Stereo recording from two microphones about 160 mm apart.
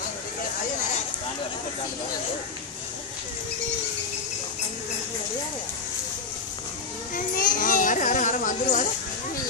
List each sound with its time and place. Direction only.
7.2 s children playing: 60° left (ahead or behind)